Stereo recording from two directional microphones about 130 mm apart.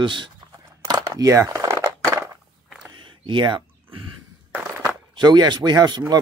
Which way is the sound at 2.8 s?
40° right (ahead or behind).